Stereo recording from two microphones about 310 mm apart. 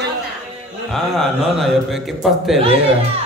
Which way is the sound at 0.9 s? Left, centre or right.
Centre.